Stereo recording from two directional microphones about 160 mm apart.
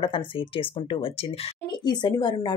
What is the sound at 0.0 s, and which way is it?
A woman's voice, 30° left (ahead or behind).